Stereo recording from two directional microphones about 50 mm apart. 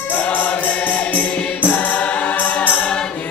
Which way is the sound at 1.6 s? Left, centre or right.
Left.